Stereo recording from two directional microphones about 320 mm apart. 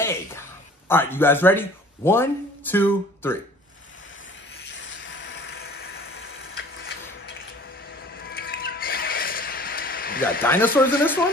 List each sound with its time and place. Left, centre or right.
0.0 s speech: centre
4.6 s vehicle: left
8.2 s music: left
10.4 s speech: centre